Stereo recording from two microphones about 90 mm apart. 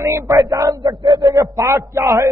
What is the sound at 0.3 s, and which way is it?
A man's voice, 40° right (ahead or behind).